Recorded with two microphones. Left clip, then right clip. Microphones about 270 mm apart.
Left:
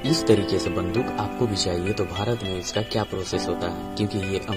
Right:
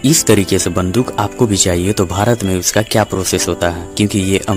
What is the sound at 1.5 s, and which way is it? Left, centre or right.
Speech, right.